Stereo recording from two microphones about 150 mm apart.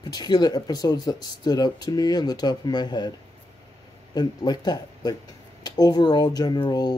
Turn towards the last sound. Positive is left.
turn(degrees=25)  # may be behind; listen again after turning